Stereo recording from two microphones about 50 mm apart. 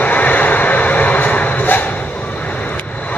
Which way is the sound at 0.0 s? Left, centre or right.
Left.